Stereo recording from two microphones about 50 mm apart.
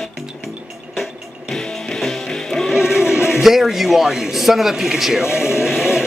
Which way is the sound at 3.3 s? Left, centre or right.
Centre.